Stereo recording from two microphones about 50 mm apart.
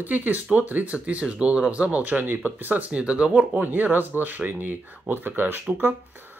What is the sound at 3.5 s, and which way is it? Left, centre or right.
Speech, right.